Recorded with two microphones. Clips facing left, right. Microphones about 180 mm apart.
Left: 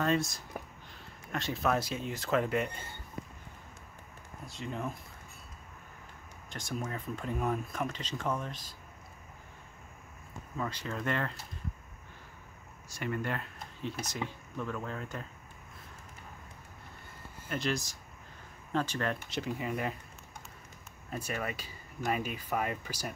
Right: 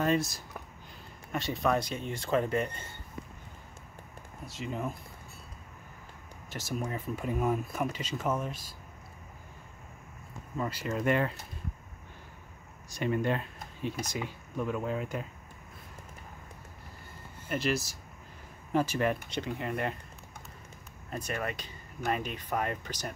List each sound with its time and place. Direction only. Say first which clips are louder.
0.0 s speech: right 2 dB; centre (ahead or behind)
4.5 s speech: right 2 dB; centre (ahead or behind)
6.5 s speech: right 3 dB; 5° right (ahead or behind)
10.6 s speech: right 4 dB; 10° right (ahead or behind)
12.9 s speech: right 5 dB; 20° right (ahead or behind)
17.5 s speech: right 3 dB; 5° right (ahead or behind)
19.3 s speech: right 1 dB; 5° left (ahead or behind)
21.1 s speech: right 1 dB; 5° left (ahead or behind)